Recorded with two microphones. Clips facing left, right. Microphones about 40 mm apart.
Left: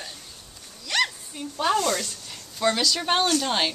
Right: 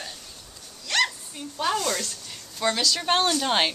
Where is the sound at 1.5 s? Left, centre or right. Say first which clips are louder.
Left 3 dB; centre.